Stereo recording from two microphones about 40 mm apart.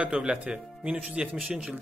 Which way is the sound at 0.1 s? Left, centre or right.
Right.